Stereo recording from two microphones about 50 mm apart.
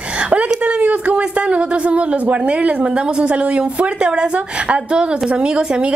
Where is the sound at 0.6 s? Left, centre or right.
Right.